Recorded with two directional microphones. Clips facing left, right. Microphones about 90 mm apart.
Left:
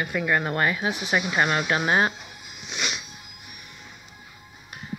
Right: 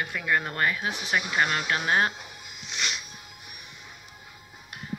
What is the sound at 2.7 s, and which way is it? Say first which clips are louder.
Music: left 2 dB; 10° left (ahead or behind).